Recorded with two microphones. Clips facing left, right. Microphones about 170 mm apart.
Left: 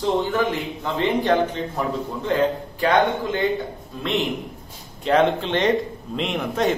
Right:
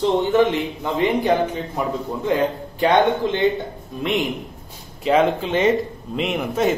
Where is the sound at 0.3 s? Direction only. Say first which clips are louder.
Right 5 dB; 20° right (ahead or behind).